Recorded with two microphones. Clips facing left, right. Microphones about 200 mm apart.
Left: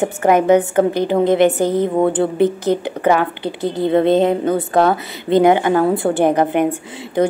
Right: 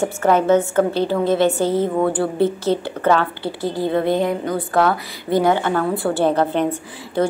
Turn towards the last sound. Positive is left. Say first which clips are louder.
# left 3 dB
turn(degrees=15)  # may be behind; listen again after turning